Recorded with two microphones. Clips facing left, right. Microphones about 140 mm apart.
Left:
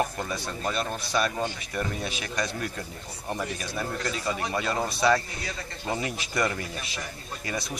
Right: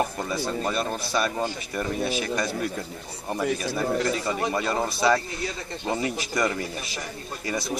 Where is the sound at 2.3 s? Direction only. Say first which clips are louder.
Right 4 dB; 5° right (ahead or behind).